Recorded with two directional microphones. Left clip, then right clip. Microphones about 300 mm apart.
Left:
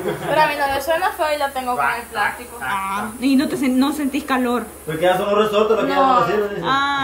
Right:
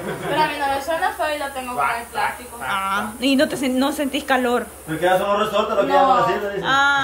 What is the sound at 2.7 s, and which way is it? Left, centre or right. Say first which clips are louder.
A woman's voice: right 1 dB; centre.